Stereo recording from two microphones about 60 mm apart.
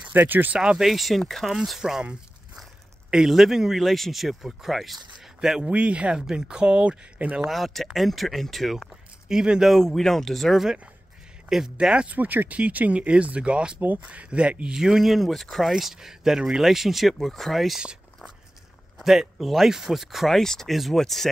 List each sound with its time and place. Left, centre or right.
0.1 s speech: right
0.6 s speech: centre
3.1 s speech: centre
5.6 s speech: right
7.4 s speech: centre
9.3 s speech: centre
9.7 s speech: centre
11.7 s speech: centre
12.2 s speech: right; by 17.8 s centre
18.9 s speech: centre